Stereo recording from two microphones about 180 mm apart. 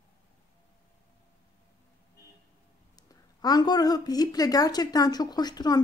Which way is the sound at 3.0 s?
20° left (ahead or behind).